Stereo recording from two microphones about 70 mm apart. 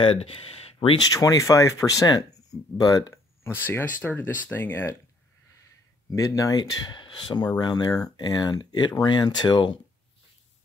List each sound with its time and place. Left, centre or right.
1.1 s speech: left
3.4 s speech: left
6.1 s speech: left
7.2 s speech: left